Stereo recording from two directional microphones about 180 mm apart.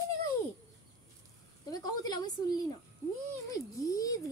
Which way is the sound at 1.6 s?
20° left (ahead or behind).